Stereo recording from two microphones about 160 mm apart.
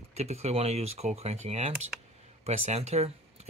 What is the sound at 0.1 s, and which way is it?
Speech, 40° right (ahead or behind).